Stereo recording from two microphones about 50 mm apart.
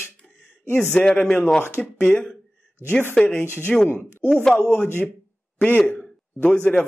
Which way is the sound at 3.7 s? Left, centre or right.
Centre.